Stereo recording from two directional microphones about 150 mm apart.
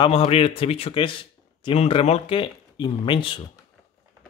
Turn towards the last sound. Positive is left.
turn(degrees=35)  # may be behind; listen again after turning